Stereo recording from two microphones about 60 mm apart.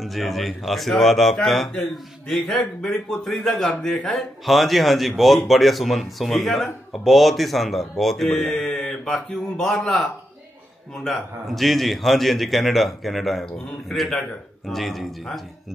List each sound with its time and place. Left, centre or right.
0.0 s speech: centre
11.1 s speech: centre